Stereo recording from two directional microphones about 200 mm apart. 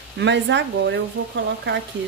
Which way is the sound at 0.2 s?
60° right (ahead or behind).